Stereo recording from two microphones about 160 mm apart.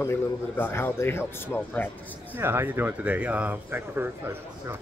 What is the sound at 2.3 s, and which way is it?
Speech, 15° right (ahead or behind).